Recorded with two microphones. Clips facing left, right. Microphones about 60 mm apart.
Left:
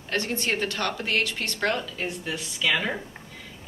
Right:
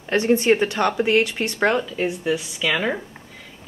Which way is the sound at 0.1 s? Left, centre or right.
Centre.